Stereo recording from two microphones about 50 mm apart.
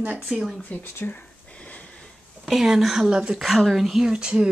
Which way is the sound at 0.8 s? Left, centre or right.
Left.